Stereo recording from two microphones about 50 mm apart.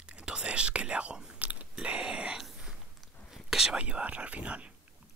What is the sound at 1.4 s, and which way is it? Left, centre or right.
Biting, right.